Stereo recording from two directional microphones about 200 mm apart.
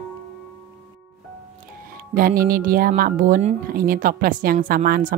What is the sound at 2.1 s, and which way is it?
Speech, 45° right (ahead or behind).